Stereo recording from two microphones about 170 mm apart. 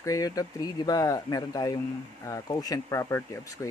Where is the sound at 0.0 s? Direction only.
20° left (ahead or behind).